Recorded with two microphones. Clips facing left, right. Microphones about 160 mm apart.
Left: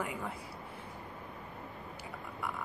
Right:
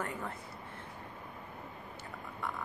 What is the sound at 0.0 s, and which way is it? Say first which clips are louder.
Speech: left 1 dB; 10° left (ahead or behind).